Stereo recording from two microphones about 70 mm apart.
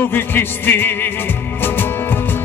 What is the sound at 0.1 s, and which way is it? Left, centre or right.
Music, left.